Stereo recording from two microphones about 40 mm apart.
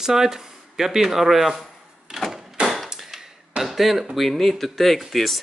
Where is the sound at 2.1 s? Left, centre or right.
Centre.